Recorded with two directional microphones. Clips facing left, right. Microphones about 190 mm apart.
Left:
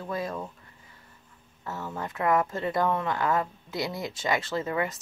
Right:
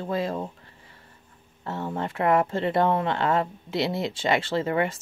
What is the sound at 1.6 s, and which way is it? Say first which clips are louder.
Speech: right 5 dB; 30° right (ahead or behind).